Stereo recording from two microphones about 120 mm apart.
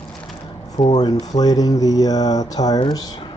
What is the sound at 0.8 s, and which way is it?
Speech, 35° left (ahead or behind).